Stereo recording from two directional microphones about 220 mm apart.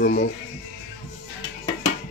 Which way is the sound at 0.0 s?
40° left (ahead or behind).